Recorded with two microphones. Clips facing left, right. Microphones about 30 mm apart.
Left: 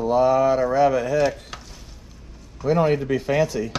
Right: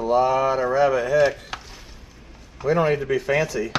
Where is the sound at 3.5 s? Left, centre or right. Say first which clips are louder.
Even; right.